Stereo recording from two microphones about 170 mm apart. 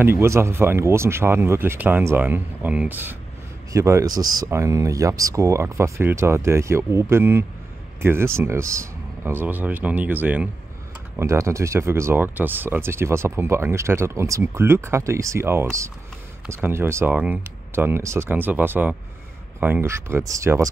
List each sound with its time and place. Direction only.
0.0 s speech: 15° right (ahead or behind)